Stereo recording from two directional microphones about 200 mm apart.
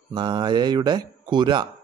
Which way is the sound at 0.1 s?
20° right (ahead or behind).